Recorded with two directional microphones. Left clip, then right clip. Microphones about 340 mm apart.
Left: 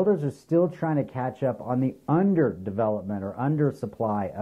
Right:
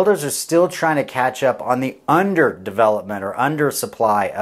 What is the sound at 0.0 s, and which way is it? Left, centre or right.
Speech, centre.